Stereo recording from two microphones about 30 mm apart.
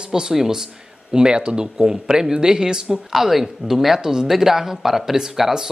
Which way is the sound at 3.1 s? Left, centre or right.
Centre.